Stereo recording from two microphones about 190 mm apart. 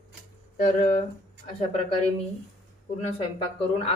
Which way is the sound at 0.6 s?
40° left (ahead or behind).